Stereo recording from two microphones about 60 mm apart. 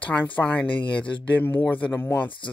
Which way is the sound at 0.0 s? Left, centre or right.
Left.